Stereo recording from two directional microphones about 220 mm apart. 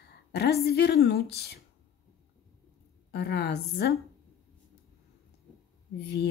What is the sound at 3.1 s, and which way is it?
Speech, 50° left (ahead or behind).